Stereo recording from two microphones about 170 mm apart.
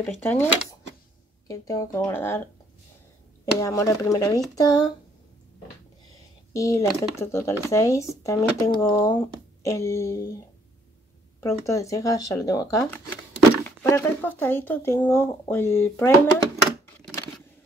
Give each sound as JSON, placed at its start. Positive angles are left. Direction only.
{"t": 0.0, "sound": "speech", "side_deg": 10}
{"t": 1.5, "sound": "speech", "side_deg": 20}
{"t": 3.5, "sound": "speech", "side_deg": 20}
{"t": 6.5, "sound": "speech", "side_deg": 20}
{"t": 11.4, "sound": "speech", "side_deg": 15}